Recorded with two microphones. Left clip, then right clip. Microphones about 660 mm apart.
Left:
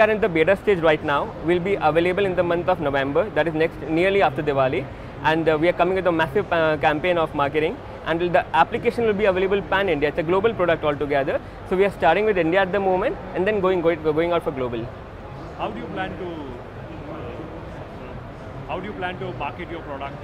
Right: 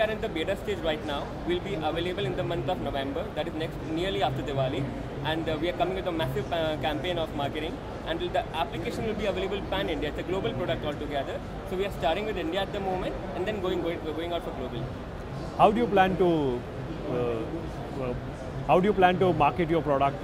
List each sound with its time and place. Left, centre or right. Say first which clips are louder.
0.0 s speech: left 11 dB; left
15.6 s speech: right 8 dB; right
18.7 s speech: right 8 dB; right